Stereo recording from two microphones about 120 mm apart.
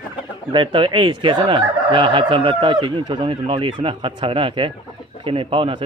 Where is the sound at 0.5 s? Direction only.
45° right (ahead or behind).